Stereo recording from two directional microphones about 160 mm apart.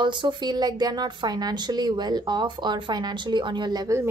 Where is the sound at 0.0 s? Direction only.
30° right (ahead or behind).